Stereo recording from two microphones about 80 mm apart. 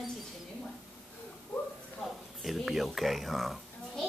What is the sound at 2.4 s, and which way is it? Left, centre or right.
A child's voice, centre.